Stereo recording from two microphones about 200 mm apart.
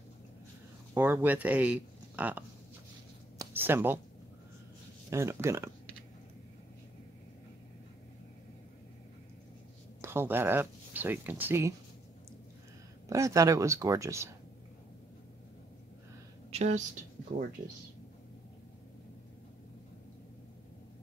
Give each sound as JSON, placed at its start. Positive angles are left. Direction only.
{"t": 0.9, "sound": "speech", "side_deg": -10}
{"t": 3.3, "sound": "a sound", "side_deg": -10}
{"t": 5.1, "sound": "speech", "side_deg": -15}
{"t": 10.0, "sound": "speech", "side_deg": -10}
{"t": 13.1, "sound": "speech", "side_deg": -15}
{"t": 16.4, "sound": "a sound", "side_deg": -35}